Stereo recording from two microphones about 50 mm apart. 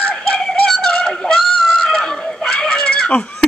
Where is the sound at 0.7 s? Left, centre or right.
Centre.